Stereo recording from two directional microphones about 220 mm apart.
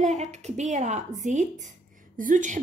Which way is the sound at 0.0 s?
30° right (ahead or behind).